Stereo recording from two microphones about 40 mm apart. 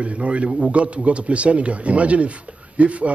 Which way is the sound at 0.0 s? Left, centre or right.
Right.